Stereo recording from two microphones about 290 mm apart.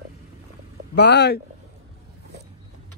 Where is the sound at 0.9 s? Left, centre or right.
Left.